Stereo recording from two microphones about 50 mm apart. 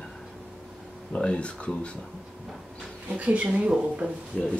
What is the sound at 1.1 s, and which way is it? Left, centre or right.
Speech, left.